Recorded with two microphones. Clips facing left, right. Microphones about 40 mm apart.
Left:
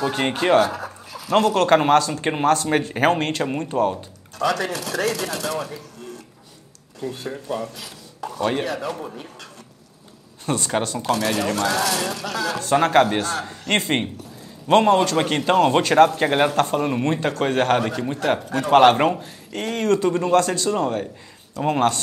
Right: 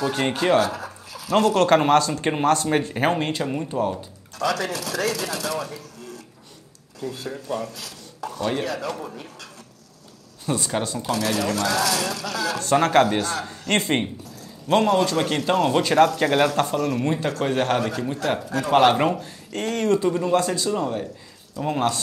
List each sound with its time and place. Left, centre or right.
0.0 s a man's voice: centre
1.9 s speech: left
3.5 s speech: left
3.9 s speech: centre
7.0 s speech: left
7.3 s a man's voice: centre
7.7 s chopping: centre
8.6 s speech: left
10.4 s speech: left
11.0 s a man's voice: centre
13.2 s speech: left
14.7 s speech: left
20.2 s speech: left
20.7 s speech: left